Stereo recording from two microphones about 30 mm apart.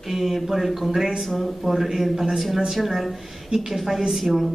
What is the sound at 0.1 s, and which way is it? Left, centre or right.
Speech, centre.